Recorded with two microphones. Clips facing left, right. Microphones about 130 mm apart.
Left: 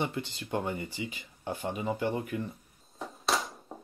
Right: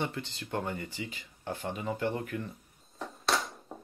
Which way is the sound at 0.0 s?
15° left (ahead or behind).